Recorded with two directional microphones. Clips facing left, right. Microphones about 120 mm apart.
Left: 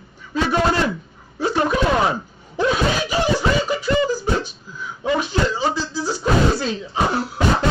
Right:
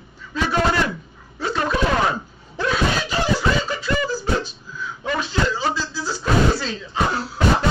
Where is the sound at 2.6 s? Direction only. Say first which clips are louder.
Left 4 dB; 15° left (ahead or behind).